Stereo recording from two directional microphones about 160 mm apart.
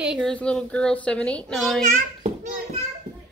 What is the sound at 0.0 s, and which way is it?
A woman's voice, centre (ahead or behind).